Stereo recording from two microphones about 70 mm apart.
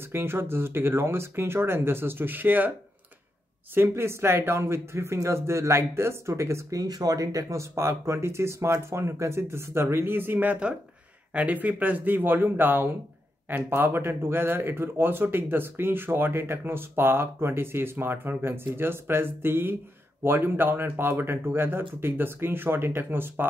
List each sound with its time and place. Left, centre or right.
0.1 s speech: right
3.7 s speech: right
6.8 s speech: right